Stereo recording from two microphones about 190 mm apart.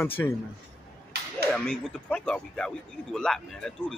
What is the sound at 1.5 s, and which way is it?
Speech, 5° left (ahead or behind).